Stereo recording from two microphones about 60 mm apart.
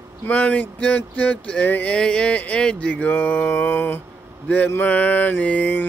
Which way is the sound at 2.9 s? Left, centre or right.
Left.